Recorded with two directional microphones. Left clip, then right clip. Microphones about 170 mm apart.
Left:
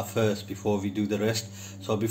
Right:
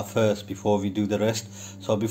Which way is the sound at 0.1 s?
60° right (ahead or behind).